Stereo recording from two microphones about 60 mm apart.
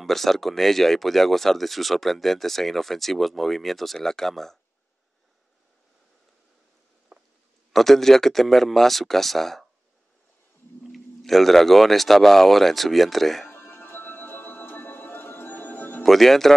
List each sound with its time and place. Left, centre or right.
0.0 s speech: centre
7.1 s a sound: centre
7.7 s speech: centre
10.9 s speech: centre
13.5 s music: left
16.0 s speech: centre